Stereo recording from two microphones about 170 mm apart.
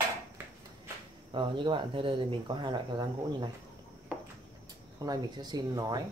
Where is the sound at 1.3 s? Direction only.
30° right (ahead or behind).